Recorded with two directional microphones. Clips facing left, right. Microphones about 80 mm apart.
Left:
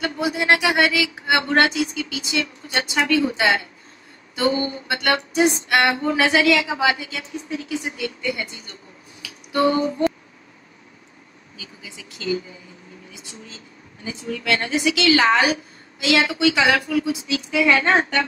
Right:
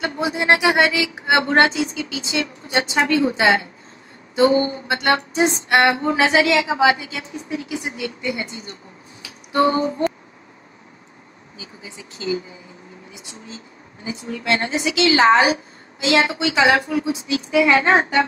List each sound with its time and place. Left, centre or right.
0.0 s a woman's voice: right
9.2 s a sound: right
11.5 s a woman's voice: right